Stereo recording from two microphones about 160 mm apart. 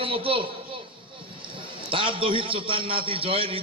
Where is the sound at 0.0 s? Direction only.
35° right (ahead or behind).